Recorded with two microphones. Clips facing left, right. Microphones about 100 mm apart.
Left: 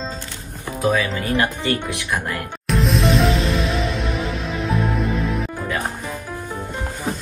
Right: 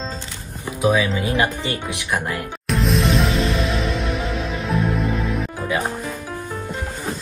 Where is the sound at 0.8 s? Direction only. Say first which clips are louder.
Right 1 dB; 15° right (ahead or behind).